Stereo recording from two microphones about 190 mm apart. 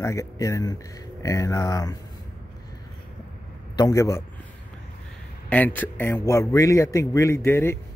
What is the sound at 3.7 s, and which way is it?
Speech, 20° left (ahead or behind).